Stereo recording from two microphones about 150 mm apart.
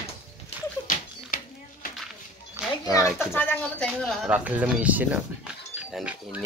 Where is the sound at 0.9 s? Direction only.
60° left (ahead or behind).